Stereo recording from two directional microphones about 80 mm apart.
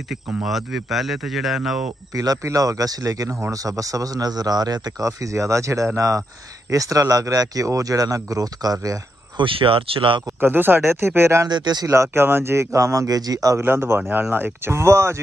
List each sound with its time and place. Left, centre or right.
0.1 s speech: centre
2.1 s speech: right
9.4 s speech: right
10.4 s a man's voice: right
11.4 s speech: right
11.9 s a man's voice: right
13.6 s a man's voice: right